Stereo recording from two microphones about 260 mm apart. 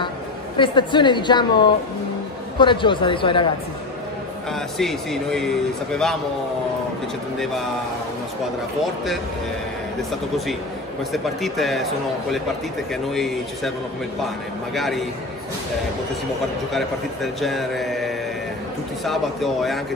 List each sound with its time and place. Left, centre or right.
0.6 s a woman's voice: centre
4.5 s a man's voice: centre
11.1 s a man's voice: centre
16.7 s a man's voice: centre